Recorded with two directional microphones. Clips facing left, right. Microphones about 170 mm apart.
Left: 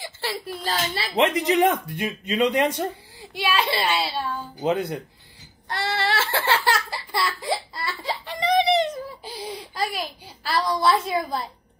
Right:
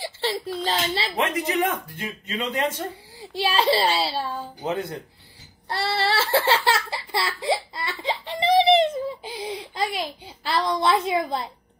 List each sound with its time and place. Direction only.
0.0 s a sound: 20° right (ahead or behind)
0.7 s a woman's voice: 25° right (ahead or behind)
1.1 s speech: 20° left (ahead or behind)
3.3 s a child's voice: 35° right (ahead or behind)
4.6 s speech: 15° left (ahead or behind)
5.7 s a sound: 30° right (ahead or behind)